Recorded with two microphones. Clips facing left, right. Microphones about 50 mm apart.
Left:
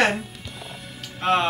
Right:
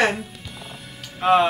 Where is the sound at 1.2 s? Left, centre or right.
Centre.